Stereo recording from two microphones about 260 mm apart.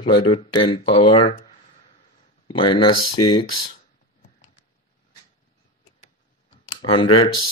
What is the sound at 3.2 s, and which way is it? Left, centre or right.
Speech, left.